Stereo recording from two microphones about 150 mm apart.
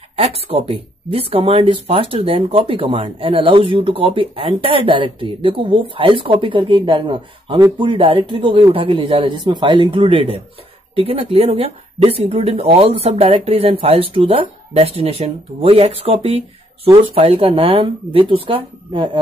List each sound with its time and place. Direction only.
0.1 s speech: 40° right (ahead or behind)